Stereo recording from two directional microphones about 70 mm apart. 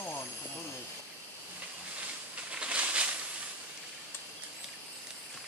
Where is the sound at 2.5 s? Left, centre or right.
Centre.